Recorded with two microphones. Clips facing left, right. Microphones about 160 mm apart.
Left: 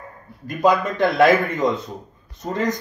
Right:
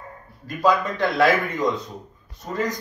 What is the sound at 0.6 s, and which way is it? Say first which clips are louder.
A man's voice: left 3 dB; 20° left (ahead or behind).